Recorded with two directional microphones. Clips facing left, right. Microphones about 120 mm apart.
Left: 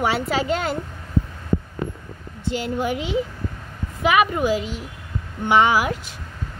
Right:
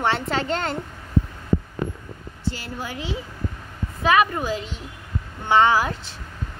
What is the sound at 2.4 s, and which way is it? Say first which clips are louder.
A woman's voice: left 7 dB; 20° left (ahead or behind).